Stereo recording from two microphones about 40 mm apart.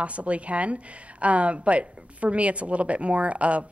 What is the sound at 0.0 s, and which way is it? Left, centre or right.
Speech, right.